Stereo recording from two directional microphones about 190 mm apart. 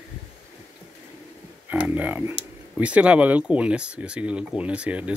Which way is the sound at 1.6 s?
10° right (ahead or behind).